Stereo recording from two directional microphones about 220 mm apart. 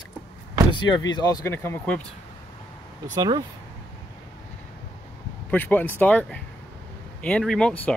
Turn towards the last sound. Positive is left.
turn(degrees=5)  # may be behind; listen again after turning